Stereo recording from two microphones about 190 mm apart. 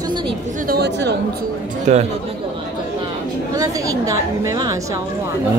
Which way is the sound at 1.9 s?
35° right (ahead or behind).